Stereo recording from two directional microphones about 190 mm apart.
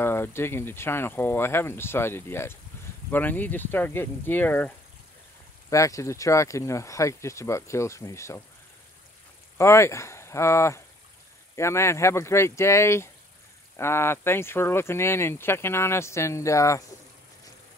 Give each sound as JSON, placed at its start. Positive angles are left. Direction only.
{"t": 0.0, "sound": "speech", "side_deg": 10}
{"t": 9.6, "sound": "speech", "side_deg": 15}